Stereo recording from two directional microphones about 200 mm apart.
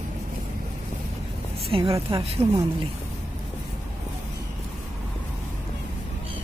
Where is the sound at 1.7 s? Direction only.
30° right (ahead or behind).